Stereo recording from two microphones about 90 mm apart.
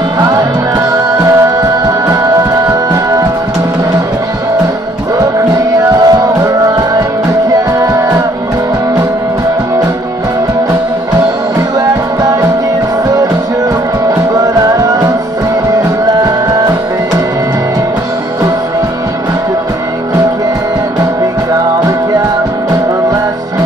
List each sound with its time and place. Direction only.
1.2 s music: 35° right (ahead or behind)
5.9 s music: 45° right (ahead or behind)